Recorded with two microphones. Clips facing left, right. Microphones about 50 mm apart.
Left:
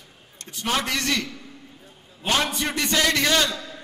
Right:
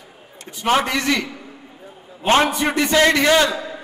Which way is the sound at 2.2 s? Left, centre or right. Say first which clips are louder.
Right 8 dB; right.